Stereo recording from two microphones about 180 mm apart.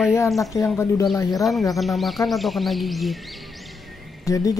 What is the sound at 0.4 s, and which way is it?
Speech, 15° left (ahead or behind).